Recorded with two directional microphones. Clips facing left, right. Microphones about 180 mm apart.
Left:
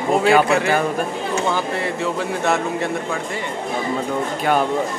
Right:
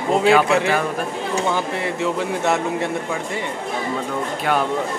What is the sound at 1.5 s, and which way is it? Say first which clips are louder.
Speech: left 1 dB; 20° right (ahead or behind).